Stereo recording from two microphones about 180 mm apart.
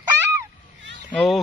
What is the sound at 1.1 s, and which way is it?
Speech, 5° left (ahead or behind).